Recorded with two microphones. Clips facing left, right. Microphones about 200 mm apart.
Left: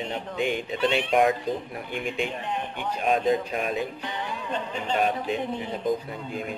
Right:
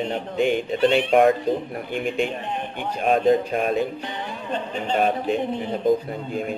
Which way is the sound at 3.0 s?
50° right (ahead or behind).